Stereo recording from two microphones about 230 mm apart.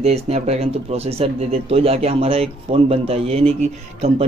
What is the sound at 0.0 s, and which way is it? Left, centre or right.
Speech, right.